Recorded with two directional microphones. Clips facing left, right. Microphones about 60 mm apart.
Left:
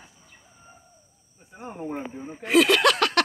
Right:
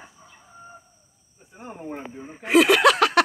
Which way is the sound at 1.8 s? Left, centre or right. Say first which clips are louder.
Left 3 dB; centre.